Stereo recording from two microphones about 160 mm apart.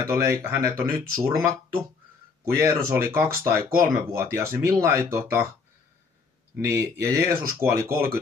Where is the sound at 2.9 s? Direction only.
15° right (ahead or behind).